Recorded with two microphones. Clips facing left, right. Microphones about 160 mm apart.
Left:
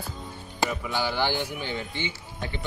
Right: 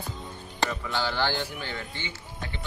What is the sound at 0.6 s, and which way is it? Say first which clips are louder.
Speech: left 2 dB; 15° left (ahead or behind).